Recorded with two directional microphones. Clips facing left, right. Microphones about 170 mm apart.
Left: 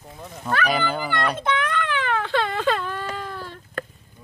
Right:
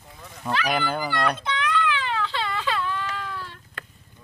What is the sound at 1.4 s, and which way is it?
Baby cry, 50° left (ahead or behind).